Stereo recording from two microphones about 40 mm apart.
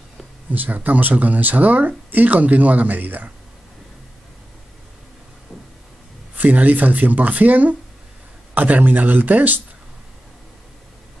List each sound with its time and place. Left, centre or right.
0.5 s speech: right
6.3 s speech: right